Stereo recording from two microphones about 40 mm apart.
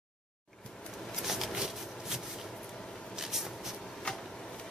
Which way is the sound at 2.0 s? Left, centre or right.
Centre.